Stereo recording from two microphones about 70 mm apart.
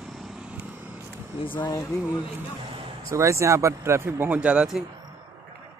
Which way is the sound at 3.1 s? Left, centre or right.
Right.